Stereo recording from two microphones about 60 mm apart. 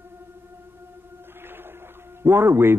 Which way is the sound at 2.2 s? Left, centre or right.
Right.